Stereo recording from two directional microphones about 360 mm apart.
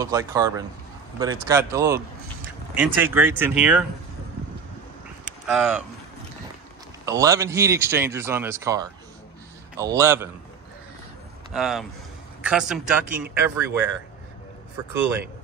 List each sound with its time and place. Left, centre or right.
0.0 s speech: centre
5.2 s a sound: centre
7.1 s speech: centre
11.5 s speech: centre